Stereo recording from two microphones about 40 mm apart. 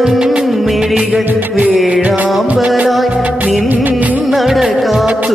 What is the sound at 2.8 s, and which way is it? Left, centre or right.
Music, centre.